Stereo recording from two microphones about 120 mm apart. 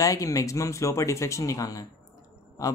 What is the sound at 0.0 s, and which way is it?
Speech, 30° left (ahead or behind).